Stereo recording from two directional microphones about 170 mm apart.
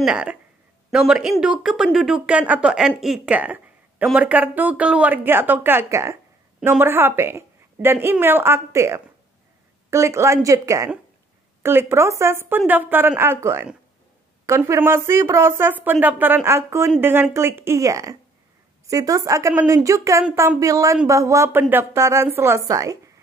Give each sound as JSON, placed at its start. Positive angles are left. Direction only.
{"t": 0.0, "sound": "a man's voice", "side_deg": -5}